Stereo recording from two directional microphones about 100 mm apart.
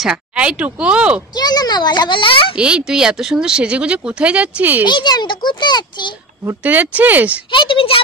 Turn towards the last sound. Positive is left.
turn(degrees=65)  # may be behind; listen again after turning